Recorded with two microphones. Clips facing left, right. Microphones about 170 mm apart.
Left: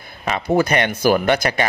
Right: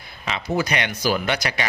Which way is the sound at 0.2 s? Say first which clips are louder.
Left 6 dB; 50° left (ahead or behind).